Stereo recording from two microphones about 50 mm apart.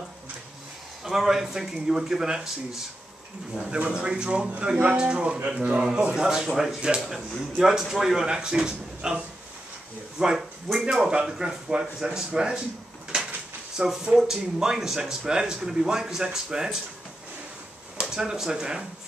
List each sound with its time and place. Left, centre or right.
1.0 s speech: centre; by 5.9 s right
5.9 s speech: centre
13.7 s speech: centre
18.0 s speech: centre